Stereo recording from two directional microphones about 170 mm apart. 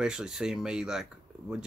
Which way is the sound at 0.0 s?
5° right (ahead or behind).